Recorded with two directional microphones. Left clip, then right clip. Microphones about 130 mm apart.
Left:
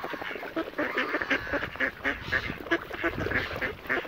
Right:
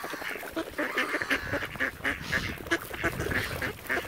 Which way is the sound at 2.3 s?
5° left (ahead or behind).